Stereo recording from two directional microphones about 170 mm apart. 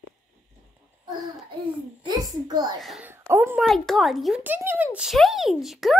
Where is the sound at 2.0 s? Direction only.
25° right (ahead or behind).